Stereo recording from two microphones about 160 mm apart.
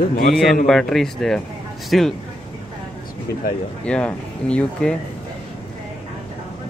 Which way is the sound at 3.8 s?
5° left (ahead or behind).